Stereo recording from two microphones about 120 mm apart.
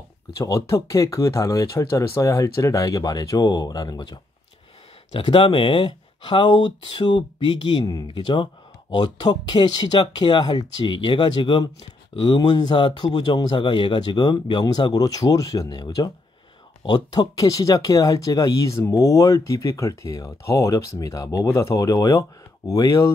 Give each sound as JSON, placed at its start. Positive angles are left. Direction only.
{"t": 0.4, "sound": "speech", "side_deg": 25}
{"t": 5.1, "sound": "speech", "side_deg": 45}